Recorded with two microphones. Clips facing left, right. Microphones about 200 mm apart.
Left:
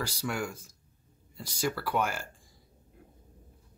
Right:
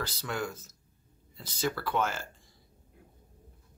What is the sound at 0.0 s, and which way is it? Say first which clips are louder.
Speech: left 1 dB; 10° left (ahead or behind).